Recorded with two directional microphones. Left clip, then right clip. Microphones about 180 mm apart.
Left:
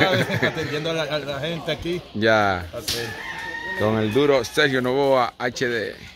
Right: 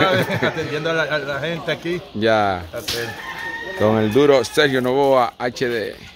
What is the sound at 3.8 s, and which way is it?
Speech, 25° right (ahead or behind).